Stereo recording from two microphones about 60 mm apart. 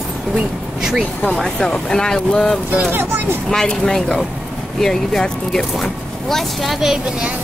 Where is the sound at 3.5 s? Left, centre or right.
Centre.